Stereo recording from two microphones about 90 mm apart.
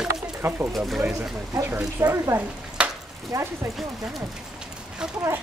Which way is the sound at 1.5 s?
30° right (ahead or behind).